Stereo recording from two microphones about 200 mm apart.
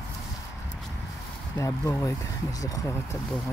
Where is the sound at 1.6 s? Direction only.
15° left (ahead or behind).